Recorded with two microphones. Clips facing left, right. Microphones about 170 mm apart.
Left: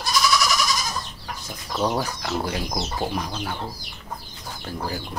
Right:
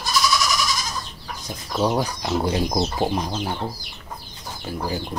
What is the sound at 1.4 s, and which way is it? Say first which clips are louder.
Speech: right 3 dB; 15° right (ahead or behind).